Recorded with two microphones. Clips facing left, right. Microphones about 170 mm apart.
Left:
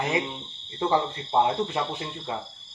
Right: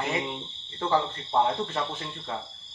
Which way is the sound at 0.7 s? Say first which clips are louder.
Left 2 dB; 15° left (ahead or behind).